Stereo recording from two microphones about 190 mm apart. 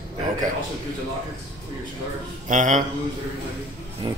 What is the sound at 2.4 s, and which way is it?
Speech, 40° right (ahead or behind).